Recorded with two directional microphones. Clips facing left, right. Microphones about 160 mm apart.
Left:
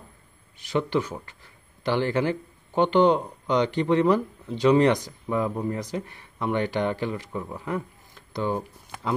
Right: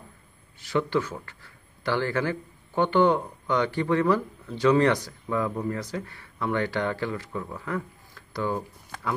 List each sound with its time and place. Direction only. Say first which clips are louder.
0.6 s speech: even; 20° left (ahead or behind)